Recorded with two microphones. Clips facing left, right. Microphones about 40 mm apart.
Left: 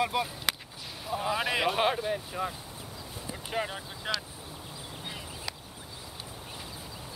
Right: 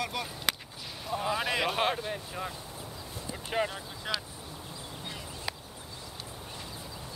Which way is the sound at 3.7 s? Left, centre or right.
Centre.